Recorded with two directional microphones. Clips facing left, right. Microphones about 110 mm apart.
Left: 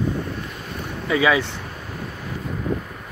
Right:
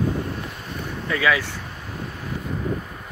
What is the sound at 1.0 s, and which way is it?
Speech, 15° left (ahead or behind).